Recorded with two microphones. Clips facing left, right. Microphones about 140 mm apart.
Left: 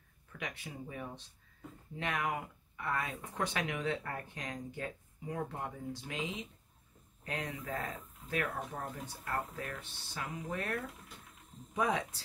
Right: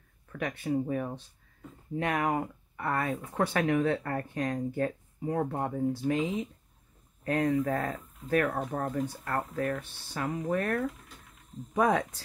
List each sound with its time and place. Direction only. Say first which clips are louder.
0.3 s speech: right 13 dB; 60° right (ahead or behind)
7.2 s speech: right 13 dB; 55° right (ahead or behind)